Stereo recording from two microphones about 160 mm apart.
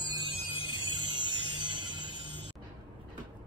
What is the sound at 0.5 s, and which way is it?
Music, 35° left (ahead or behind).